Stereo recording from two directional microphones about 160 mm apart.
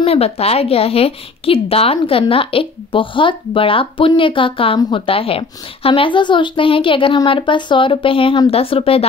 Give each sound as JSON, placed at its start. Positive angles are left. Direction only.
{"t": 0.0, "sound": "a woman's voice", "side_deg": 40}